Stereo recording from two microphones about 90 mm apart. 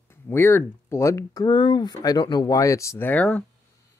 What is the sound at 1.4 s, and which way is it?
Speech, 55° left (ahead or behind).